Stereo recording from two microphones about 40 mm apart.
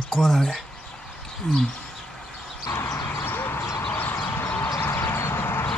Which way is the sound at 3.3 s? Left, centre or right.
Left.